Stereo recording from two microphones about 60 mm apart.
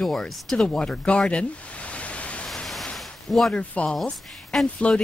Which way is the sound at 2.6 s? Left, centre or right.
Centre.